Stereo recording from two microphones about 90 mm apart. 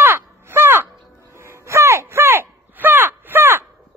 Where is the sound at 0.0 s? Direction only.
25° right (ahead or behind).